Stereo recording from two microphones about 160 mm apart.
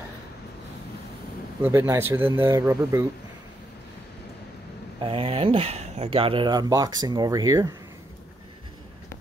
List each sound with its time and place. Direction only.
1.6 s speech: 15° right (ahead or behind)
5.0 s speech: 35° right (ahead or behind)